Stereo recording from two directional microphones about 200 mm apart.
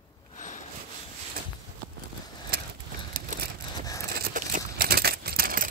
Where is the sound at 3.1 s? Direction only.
45° right (ahead or behind).